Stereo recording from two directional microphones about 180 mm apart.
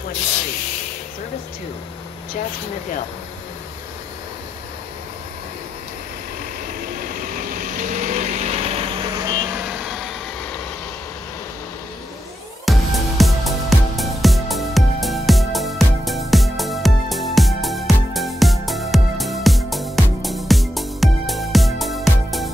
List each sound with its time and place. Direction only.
7.2 s vehicle: 50° right (ahead or behind); by 9.4 s 20° right (ahead or behind)
9.5 s vehicle: 5° right (ahead or behind)
12.6 s music: centre (ahead or behind)